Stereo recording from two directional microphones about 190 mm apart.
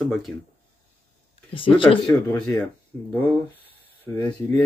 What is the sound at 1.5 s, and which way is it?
Speech, 25° left (ahead or behind).